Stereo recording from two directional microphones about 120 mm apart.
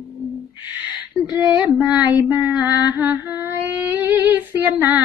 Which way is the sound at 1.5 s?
10° right (ahead or behind).